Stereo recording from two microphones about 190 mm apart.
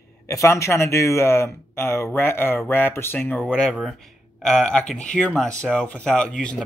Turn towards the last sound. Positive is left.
turn(degrees=5)  # may be behind; listen again after turning